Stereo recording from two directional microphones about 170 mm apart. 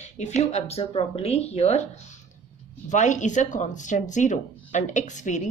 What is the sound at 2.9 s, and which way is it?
Speech, 45° left (ahead or behind).